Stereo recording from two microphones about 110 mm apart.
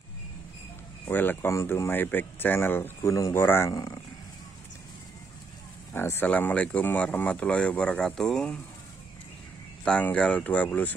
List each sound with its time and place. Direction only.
1.0 s speech: 20° left (ahead or behind)
3.7 s speech: 40° left (ahead or behind)
5.9 s speech: 20° left (ahead or behind)
9.8 s speech: 10° left (ahead or behind)